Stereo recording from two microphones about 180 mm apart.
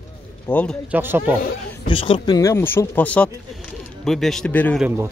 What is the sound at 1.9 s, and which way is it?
A man's voice, 30° left (ahead or behind).